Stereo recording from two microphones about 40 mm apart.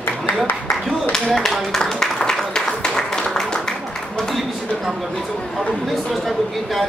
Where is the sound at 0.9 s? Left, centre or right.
Centre.